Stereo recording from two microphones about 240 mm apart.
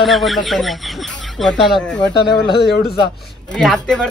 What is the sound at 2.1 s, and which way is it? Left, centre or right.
Speech, centre.